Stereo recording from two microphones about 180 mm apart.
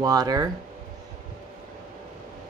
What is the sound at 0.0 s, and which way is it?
Speech, 20° right (ahead or behind).